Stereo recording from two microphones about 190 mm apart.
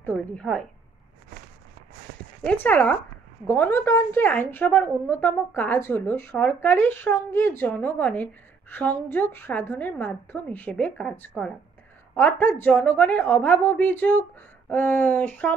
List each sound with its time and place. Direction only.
0.0 s a woman's voice: 5° left (ahead or behind)
2.1 s a sound: 50° right (ahead or behind)
2.4 s speech: 10° left (ahead or behind)